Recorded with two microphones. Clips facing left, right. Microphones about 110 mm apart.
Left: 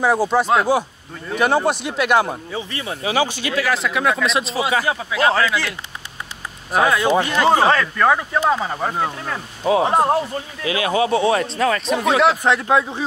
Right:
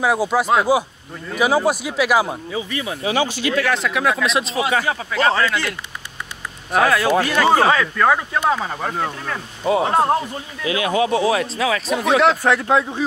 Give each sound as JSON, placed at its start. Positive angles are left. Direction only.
{"t": 0.0, "sound": "speech", "side_deg": -5}
{"t": 2.5, "sound": "speech", "side_deg": 35}
{"t": 3.0, "sound": "speech", "side_deg": 5}
{"t": 3.3, "sound": "speech", "side_deg": 20}
{"t": 3.5, "sound": "speech", "side_deg": 5}
{"t": 6.8, "sound": "speech", "side_deg": 20}
{"t": 7.6, "sound": "speech", "side_deg": -5}
{"t": 11.1, "sound": "speech", "side_deg": 0}
{"t": 12.4, "sound": "speech", "side_deg": 20}